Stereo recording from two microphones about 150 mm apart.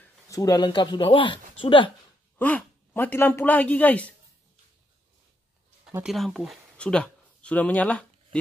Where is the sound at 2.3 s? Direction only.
10° left (ahead or behind).